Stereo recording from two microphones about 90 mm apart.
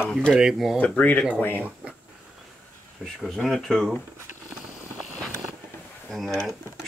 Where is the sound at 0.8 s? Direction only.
15° left (ahead or behind).